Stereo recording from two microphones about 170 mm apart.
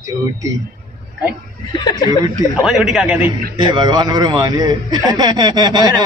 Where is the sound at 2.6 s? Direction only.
Centre (ahead or behind).